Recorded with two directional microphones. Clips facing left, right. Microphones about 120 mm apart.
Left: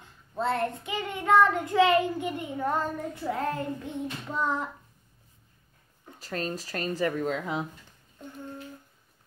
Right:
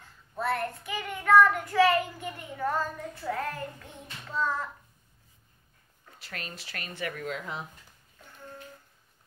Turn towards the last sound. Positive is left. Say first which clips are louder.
# left 7 dB
turn(degrees=30)  # may be behind; listen again after turning